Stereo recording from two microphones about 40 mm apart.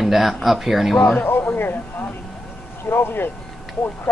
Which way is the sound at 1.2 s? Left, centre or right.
Left.